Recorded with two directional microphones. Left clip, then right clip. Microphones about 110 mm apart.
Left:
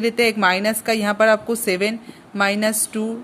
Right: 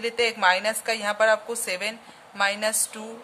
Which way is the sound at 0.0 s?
40° left (ahead or behind).